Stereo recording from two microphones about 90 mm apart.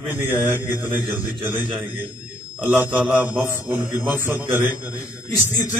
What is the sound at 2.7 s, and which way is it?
A man's voice, 15° right (ahead or behind).